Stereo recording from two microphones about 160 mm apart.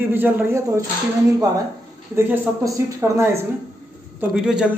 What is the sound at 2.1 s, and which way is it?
A man's voice, 15° right (ahead or behind).